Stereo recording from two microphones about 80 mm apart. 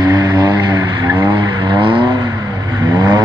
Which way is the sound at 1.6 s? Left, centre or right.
Right.